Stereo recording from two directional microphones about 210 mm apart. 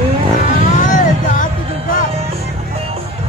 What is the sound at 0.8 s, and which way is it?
Music, 40° left (ahead or behind).